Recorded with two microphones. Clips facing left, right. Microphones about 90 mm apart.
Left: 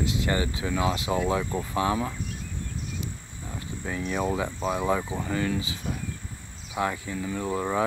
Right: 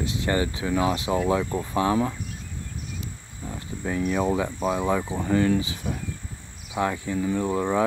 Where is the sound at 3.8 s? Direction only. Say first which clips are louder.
Right 5 dB; 45° right (ahead or behind).